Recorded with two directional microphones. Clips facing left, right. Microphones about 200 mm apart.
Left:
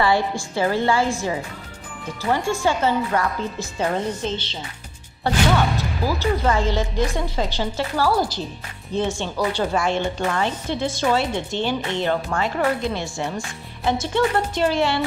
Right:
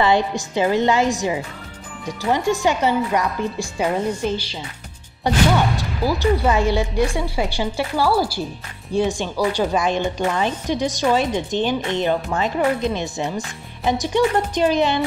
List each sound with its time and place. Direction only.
0.0 s a woman's voice: 20° right (ahead or behind)